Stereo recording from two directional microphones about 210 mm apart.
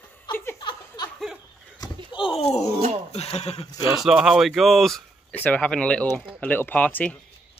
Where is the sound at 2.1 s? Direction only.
25° left (ahead or behind).